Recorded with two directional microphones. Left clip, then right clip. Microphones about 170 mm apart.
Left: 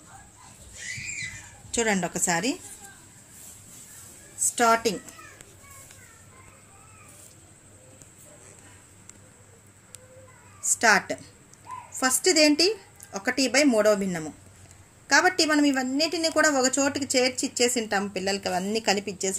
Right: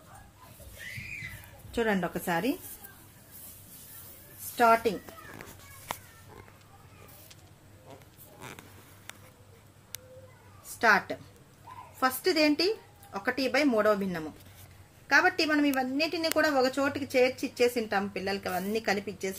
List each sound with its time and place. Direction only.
1.7 s a woman's voice: 15° left (ahead or behind)
4.6 s a woman's voice: 20° left (ahead or behind)
10.8 s a woman's voice: 35° left (ahead or behind)